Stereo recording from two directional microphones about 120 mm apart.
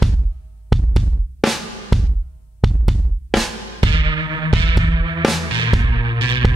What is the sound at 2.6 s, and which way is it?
Drum, centre (ahead or behind).